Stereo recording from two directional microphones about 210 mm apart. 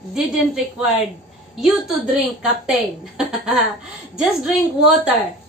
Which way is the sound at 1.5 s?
Centre (ahead or behind).